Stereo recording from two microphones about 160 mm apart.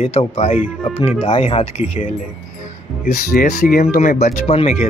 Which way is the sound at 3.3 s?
70° left (ahead or behind).